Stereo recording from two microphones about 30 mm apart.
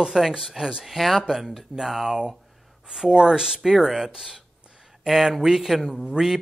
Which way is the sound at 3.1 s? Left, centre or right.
Right.